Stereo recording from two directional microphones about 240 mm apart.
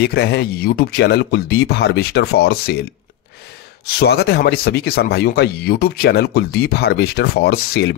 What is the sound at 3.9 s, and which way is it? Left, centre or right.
A man's voice, left.